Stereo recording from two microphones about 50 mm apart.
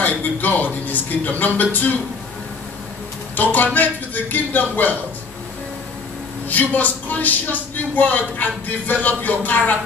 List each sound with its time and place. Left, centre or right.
0.0 s speech: left
3.3 s speech: left
6.5 s speech: left